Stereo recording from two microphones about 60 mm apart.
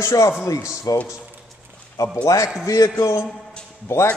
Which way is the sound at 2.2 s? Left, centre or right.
Left.